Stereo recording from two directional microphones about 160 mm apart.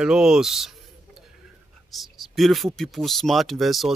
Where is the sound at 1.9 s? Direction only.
Centre (ahead or behind).